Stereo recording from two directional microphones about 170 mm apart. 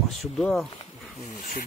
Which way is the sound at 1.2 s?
50° left (ahead or behind).